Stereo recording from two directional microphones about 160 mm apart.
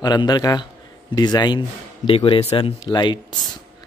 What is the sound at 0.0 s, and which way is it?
A man's voice, 25° left (ahead or behind).